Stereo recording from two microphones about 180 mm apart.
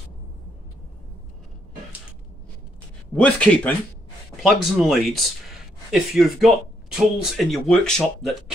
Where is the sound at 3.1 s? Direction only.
5° left (ahead or behind).